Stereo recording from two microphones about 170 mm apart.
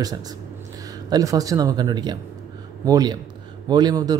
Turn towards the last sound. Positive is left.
turn(degrees=-25)  # may be behind; listen again after turning